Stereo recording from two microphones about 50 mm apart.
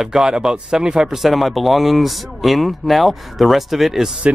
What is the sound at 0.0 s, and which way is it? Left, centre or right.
Speech, centre.